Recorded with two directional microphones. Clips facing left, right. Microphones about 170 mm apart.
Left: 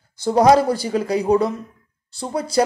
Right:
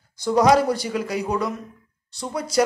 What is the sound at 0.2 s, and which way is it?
A man's voice, 30° left (ahead or behind).